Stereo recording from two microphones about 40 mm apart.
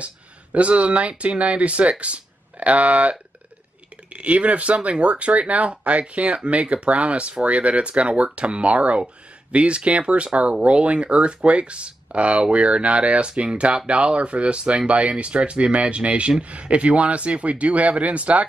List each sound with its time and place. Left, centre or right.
0.0 s speech: right